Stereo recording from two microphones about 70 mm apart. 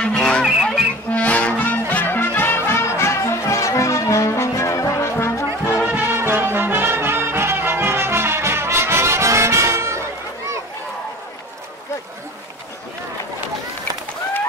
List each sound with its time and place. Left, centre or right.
0.0 s music: centre
0.6 s music: centre
1.1 s music: centre; by 5.4 s left
5.9 s music: right